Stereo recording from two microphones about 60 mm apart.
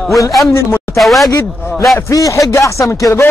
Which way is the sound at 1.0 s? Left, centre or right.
Centre.